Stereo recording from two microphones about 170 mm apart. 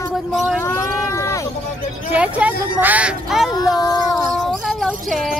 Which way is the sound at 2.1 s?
10° right (ahead or behind).